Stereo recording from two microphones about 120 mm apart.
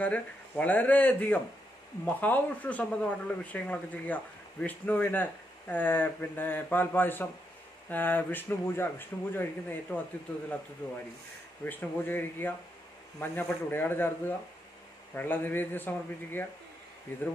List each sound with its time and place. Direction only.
0.0 s speech: 10° left (ahead or behind)
11.6 s speech: 15° left (ahead or behind)